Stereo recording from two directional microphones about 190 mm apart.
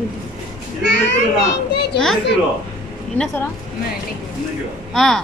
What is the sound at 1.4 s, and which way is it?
Speech, 60° left (ahead or behind).